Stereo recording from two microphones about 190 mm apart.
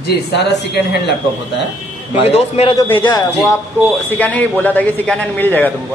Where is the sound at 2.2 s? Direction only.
35° left (ahead or behind).